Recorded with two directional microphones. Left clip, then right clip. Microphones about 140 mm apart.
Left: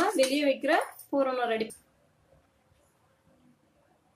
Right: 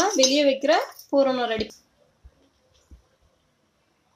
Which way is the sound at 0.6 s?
70° right (ahead or behind).